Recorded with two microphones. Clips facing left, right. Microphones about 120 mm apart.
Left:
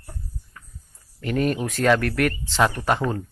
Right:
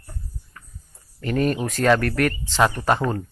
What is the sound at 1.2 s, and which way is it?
Speech, 5° left (ahead or behind).